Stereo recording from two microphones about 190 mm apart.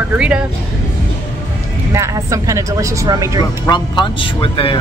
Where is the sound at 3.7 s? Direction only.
25° left (ahead or behind).